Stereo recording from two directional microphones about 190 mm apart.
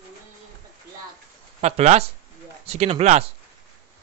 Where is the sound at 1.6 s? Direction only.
35° right (ahead or behind).